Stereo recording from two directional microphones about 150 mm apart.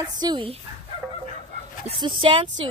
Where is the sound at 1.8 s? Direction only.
35° right (ahead or behind).